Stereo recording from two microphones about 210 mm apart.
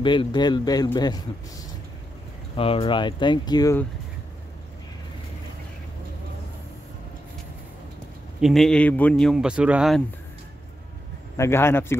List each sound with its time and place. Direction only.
0.0 s speech: 20° left (ahead or behind)
2.5 s speech: 25° left (ahead or behind)
8.4 s speech: centre (ahead or behind)
11.3 s speech: 10° left (ahead or behind)